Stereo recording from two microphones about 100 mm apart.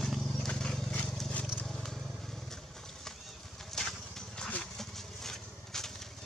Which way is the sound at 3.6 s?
5° left (ahead or behind).